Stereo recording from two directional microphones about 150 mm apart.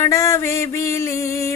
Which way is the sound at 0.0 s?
20° left (ahead or behind).